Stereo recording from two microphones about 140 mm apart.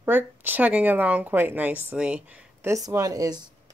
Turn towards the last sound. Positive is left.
turn(degrees=-30)  # may be behind; listen again after turning